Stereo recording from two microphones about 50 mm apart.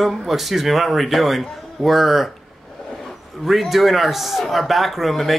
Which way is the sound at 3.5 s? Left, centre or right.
Centre.